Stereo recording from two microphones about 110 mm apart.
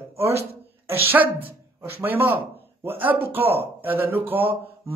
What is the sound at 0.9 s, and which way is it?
A woman's voice, 20° right (ahead or behind).